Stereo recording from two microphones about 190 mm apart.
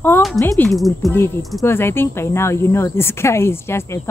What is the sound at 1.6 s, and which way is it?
Speech, 10° left (ahead or behind).